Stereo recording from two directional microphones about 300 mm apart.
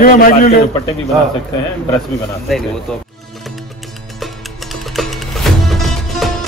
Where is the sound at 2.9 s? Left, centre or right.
Centre.